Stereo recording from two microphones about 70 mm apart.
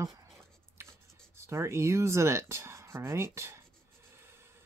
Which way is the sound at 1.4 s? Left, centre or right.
Right.